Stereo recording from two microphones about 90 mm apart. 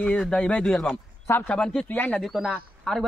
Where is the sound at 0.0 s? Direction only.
10° left (ahead or behind).